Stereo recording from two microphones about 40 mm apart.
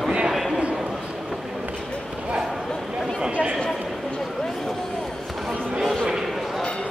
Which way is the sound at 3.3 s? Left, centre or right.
Right.